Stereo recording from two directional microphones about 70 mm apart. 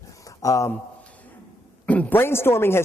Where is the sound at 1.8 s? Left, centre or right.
Left.